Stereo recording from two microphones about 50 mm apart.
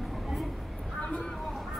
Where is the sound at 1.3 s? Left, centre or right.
Centre.